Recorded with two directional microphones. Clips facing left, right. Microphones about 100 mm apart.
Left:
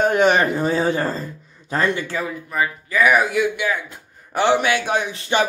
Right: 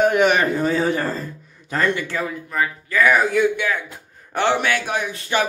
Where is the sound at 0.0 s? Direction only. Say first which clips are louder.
Even; 30° left (ahead or behind).